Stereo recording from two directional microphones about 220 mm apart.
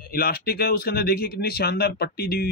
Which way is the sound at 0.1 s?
45° left (ahead or behind).